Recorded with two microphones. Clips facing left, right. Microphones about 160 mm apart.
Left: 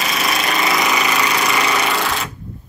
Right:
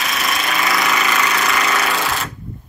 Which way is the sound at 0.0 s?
Centre (ahead or behind).